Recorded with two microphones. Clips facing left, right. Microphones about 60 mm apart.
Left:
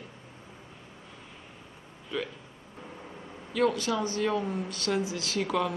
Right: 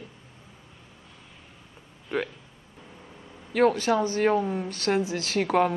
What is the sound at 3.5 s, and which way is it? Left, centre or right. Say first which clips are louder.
Speech: right 5 dB; right.